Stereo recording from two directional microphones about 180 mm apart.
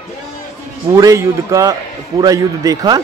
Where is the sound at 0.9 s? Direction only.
15° right (ahead or behind).